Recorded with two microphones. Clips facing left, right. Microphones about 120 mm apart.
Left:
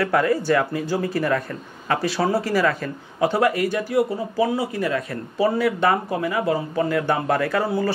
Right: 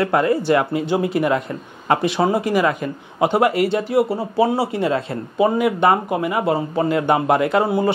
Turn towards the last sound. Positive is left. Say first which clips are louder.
# right 4 dB
turn(degrees=-20)  # may be behind; listen again after turning